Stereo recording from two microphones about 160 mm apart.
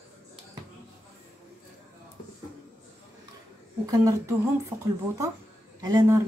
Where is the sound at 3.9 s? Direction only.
20° right (ahead or behind).